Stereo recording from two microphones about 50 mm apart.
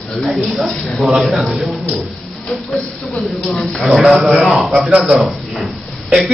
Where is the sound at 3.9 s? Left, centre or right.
Centre.